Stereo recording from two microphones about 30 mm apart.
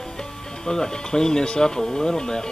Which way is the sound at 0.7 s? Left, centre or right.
Left.